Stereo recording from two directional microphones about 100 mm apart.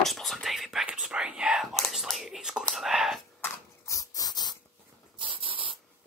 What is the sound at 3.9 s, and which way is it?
Dog, 35° left (ahead or behind).